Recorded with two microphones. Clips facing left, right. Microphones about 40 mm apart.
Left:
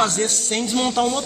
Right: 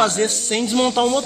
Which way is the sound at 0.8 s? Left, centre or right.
Right.